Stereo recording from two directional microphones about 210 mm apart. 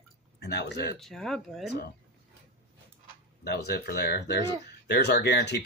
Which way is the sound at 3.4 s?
50° left (ahead or behind).